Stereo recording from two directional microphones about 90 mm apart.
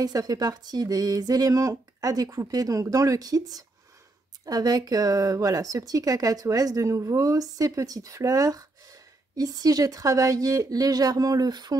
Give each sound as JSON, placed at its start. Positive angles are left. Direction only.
{"t": 0.0, "sound": "speech", "side_deg": -45}